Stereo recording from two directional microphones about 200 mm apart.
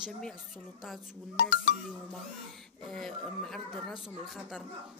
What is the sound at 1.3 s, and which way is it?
Speech, 50° left (ahead or behind).